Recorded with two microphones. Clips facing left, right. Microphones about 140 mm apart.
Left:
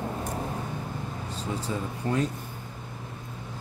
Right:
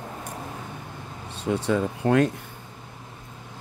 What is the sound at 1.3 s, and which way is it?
Speech, 70° right (ahead or behind).